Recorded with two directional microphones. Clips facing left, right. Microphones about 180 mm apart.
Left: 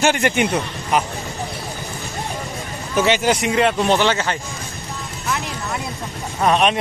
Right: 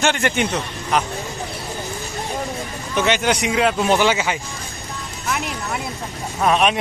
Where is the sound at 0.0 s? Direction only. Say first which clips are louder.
Left 2 dB; 10° left (ahead or behind).